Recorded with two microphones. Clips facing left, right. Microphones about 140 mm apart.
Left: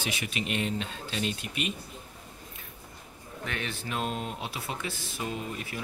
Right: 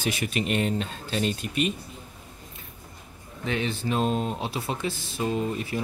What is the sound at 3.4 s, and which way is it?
Speech, 25° right (ahead or behind).